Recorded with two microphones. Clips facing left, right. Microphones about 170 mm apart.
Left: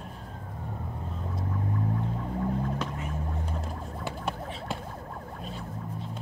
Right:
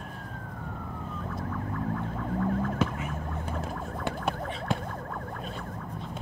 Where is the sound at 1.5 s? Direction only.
60° right (ahead or behind).